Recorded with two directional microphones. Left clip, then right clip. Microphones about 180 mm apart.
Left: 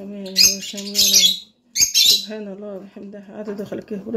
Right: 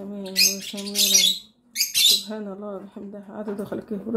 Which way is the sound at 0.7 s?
5° left (ahead or behind).